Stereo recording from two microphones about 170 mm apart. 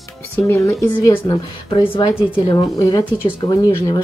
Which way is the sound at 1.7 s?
30° left (ahead or behind).